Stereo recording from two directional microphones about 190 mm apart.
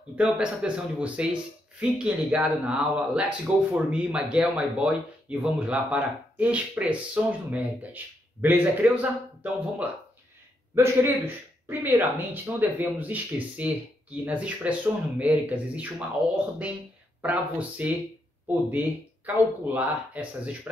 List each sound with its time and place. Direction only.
0.1 s a man's voice: 5° right (ahead or behind)
17.2 s speech: 10° right (ahead or behind)